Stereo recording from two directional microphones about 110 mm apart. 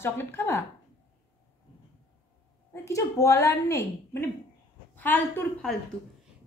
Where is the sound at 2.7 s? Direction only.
30° left (ahead or behind).